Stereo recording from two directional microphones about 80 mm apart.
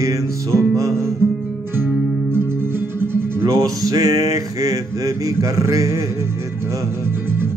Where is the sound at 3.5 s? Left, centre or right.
Right.